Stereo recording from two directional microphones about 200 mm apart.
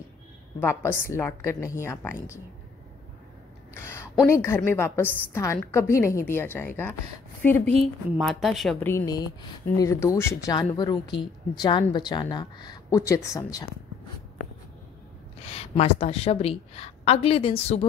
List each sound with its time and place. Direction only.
0.6 s a woman's voice: 10° left (ahead or behind)
3.7 s a sound: 15° left (ahead or behind)
4.3 s a woman's voice: 10° left (ahead or behind)
8.2 s a woman's voice: centre (ahead or behind); by 13.7 s 15° left (ahead or behind)
15.4 s a woman's voice: 30° left (ahead or behind)